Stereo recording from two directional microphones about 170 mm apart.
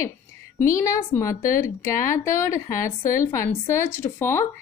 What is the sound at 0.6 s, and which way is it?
A woman's voice, 20° left (ahead or behind).